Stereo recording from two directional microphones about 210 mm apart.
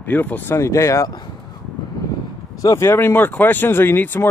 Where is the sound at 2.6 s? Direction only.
15° left (ahead or behind).